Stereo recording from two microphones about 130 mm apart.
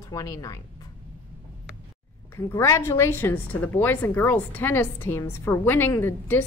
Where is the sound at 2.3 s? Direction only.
20° left (ahead or behind).